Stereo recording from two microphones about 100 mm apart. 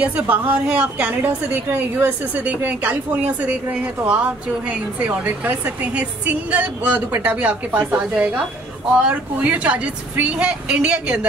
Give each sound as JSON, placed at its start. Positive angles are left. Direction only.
{"t": 0.0, "sound": "a woman's voice", "side_deg": -15}